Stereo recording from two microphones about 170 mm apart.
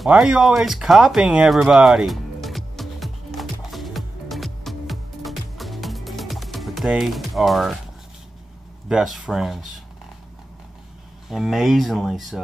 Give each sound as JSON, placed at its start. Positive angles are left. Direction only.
{"t": 0.0, "sound": "a sound", "side_deg": -5}
{"t": 8.8, "sound": "speech", "side_deg": -5}
{"t": 11.2, "sound": "speech", "side_deg": 0}